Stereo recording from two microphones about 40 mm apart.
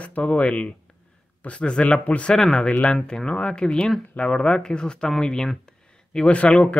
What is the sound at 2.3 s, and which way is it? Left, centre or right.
Speech, centre.